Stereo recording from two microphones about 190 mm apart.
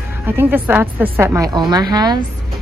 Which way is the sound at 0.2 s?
10° right (ahead or behind).